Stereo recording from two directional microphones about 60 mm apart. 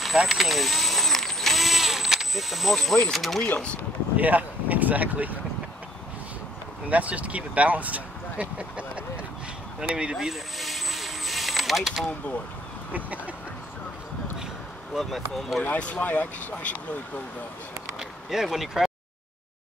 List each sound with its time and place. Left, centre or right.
0.0 s vehicle: centre
3.1 s speech: centre
3.5 s speech: centre
4.2 s speech: right
6.9 s speech: right
10.1 s vehicle: centre
15.0 s speech: centre
15.6 s speech: left
17.9 s a sound: centre